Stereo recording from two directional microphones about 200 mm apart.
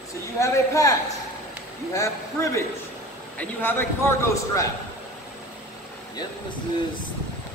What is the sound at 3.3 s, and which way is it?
A man's voice, 10° left (ahead or behind).